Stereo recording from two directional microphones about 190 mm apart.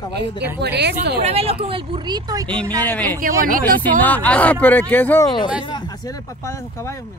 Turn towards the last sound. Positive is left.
turn(degrees=15)  # may be behind; listen again after turning